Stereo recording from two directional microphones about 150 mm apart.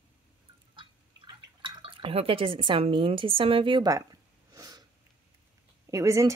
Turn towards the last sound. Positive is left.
turn(degrees=-20)  # may be behind; listen again after turning